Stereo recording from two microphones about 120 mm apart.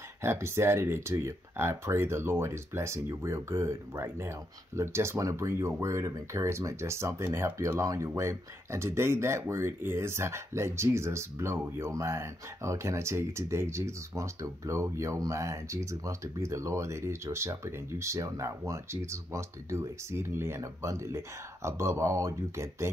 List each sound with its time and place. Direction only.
0.2 s speech: 20° right (ahead or behind)